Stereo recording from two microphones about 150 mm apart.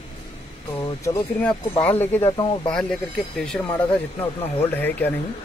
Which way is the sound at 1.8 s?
10° left (ahead or behind).